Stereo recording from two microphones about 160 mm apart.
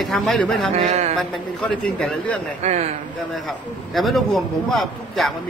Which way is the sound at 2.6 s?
45° right (ahead or behind).